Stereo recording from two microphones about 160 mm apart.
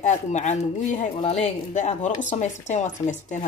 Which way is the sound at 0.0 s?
45° left (ahead or behind).